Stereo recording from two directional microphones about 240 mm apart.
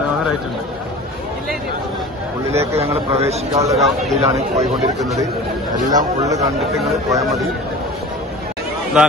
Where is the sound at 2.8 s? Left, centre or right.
Right.